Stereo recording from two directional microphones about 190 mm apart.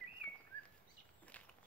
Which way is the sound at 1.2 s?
5° left (ahead or behind).